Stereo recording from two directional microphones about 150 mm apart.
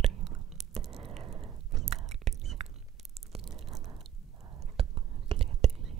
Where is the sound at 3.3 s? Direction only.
40° right (ahead or behind).